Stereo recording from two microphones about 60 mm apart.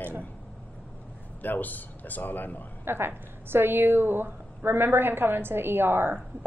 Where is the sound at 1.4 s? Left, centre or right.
Left.